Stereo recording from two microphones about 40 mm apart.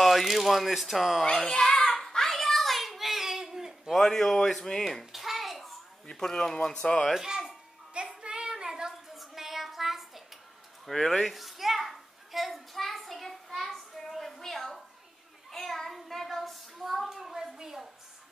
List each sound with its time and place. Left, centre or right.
0.0 s speech: centre
1.2 s speech: centre
1.9 s a sound: centre
3.9 s speech: centre
5.1 s a sound: centre
6.1 s speech: centre
7.2 s a child's voice: centre
8.1 s child singing: right; by 10.2 s centre
10.9 s speech: centre
11.3 s a sound: centre